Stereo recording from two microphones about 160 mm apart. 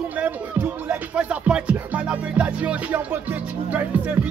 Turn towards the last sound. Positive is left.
turn(degrees=-10)  # may be behind; listen again after turning